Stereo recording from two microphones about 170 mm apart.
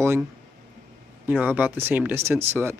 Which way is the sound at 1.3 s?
10° right (ahead or behind).